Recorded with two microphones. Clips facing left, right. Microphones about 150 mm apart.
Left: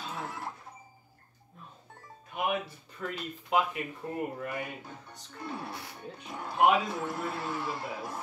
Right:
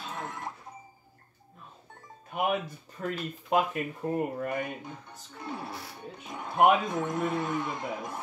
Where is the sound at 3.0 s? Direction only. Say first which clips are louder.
Right 4 dB; 40° right (ahead or behind).